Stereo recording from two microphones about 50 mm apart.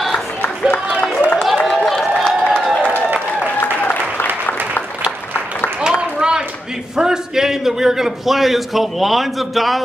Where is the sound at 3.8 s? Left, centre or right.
Left.